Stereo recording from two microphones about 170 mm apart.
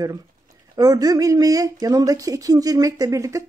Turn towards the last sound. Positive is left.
turn(degrees=-20)  # may be behind; listen again after turning